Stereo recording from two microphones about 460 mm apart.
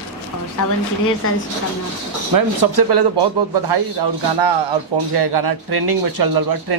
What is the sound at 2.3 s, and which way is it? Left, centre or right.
Speech, right.